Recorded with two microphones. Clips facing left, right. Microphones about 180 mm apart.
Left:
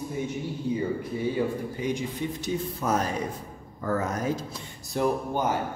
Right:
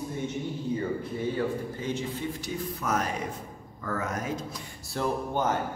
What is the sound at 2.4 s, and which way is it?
Speech, 30° left (ahead or behind).